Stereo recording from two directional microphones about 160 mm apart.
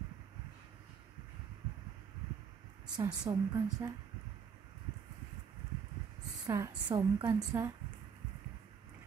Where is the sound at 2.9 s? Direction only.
25° right (ahead or behind).